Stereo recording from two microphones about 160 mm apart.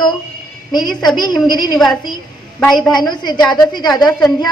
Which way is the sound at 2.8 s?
25° left (ahead or behind).